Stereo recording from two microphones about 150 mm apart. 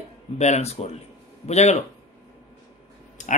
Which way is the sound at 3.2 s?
55° left (ahead or behind).